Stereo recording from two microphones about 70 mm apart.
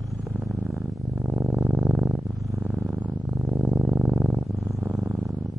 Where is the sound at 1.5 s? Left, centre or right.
Centre.